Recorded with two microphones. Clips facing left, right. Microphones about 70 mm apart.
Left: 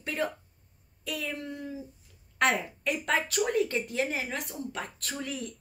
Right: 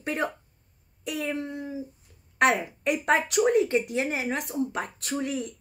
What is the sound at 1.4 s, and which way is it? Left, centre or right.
Speech, right.